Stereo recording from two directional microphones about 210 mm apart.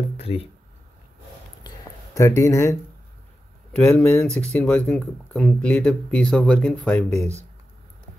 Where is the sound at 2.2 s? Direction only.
15° left (ahead or behind).